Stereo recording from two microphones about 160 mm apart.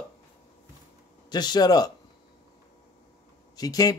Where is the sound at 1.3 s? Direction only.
25° left (ahead or behind).